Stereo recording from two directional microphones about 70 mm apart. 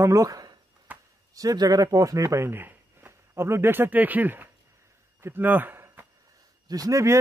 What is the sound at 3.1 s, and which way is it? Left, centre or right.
Speech, right.